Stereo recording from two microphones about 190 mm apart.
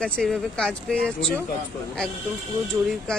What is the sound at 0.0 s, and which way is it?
Speech, 5° left (ahead or behind).